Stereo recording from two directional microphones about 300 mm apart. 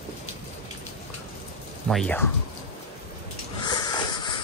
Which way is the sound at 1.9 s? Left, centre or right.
Centre.